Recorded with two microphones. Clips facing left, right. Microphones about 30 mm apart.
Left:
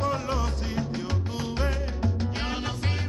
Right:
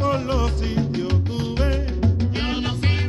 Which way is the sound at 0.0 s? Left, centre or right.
Right.